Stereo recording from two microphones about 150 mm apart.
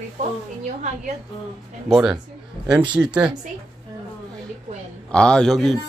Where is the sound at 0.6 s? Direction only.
55° right (ahead or behind).